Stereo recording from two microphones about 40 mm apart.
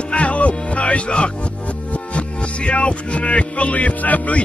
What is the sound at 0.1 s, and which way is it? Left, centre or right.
Music, left.